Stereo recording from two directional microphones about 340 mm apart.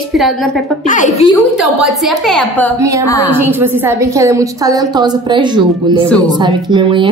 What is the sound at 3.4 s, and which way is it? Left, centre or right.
A woman's voice, centre.